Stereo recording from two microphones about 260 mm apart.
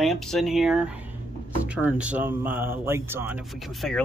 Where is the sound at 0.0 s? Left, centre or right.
Centre.